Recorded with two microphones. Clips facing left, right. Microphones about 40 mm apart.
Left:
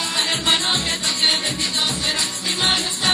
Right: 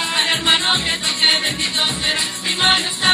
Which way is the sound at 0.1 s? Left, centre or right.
Right.